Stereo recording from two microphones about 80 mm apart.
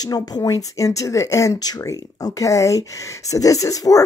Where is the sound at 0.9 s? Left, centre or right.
Left.